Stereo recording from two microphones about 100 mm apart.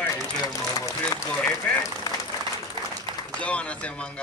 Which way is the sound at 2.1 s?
35° left (ahead or behind).